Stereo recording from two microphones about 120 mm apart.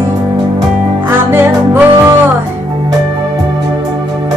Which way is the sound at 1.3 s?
20° right (ahead or behind).